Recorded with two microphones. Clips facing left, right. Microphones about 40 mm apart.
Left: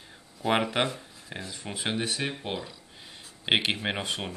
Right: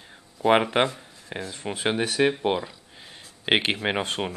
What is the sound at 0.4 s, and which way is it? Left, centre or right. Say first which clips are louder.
Speech: right 6 dB; right.